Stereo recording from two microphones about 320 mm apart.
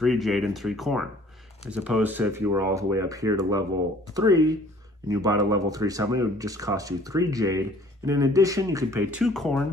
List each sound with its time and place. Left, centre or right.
0.0 s speech: centre